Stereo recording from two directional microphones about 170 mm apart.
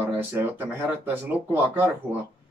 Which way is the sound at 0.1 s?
10° right (ahead or behind).